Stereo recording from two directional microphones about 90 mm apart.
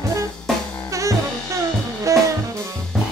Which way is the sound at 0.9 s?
35° right (ahead or behind).